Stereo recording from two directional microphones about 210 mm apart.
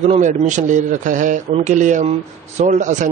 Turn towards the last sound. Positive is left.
turn(degrees=-35)  # may be behind; listen again after turning